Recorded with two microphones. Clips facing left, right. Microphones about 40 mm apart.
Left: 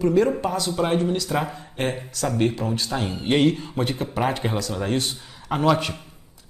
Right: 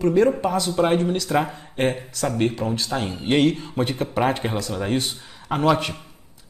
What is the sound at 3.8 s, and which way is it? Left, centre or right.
Speech, right.